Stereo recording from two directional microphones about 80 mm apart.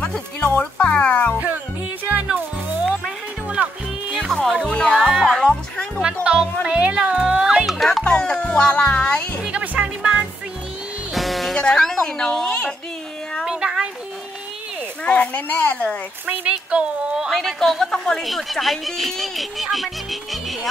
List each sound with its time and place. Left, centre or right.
0.0 s music: centre
2.0 s music: right
4.2 s music: centre
4.9 s music: centre
5.3 s music: centre
6.0 s music: centre
8.0 s music: centre
9.4 s music: centre
11.1 s music: centre
13.5 s a sound: centre
15.0 s speech: centre
16.3 s speech: centre
17.3 s speech: centre